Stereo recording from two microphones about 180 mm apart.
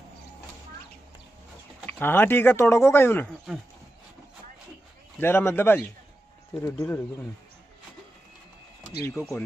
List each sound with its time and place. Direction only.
1.9 s speech: 10° left (ahead or behind)
5.2 s speech: 10° left (ahead or behind)
9.1 s speech: 5° left (ahead or behind)